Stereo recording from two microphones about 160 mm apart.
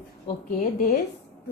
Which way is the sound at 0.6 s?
60° left (ahead or behind).